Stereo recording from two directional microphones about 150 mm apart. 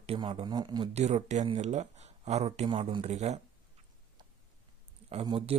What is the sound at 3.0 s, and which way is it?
Speech, 50° right (ahead or behind).